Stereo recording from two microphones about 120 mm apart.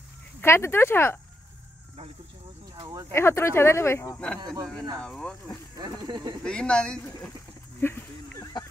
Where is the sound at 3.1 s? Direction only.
20° left (ahead or behind).